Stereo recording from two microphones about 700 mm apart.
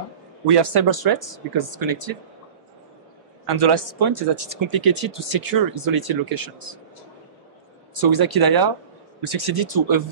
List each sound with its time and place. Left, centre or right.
0.5 s speech: right
3.4 s speech: right
7.9 s speech: right